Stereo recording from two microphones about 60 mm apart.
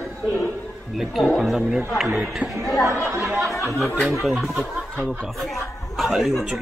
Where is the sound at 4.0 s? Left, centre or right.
Centre.